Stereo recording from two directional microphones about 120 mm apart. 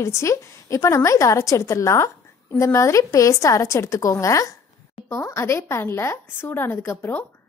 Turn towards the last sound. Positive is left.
turn(degrees=20)  # may be behind; listen again after turning